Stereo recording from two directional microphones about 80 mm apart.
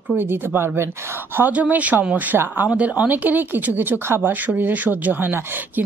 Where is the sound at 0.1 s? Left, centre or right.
Right.